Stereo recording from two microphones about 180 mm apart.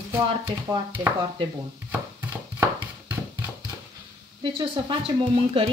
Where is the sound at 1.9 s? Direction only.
10° right (ahead or behind).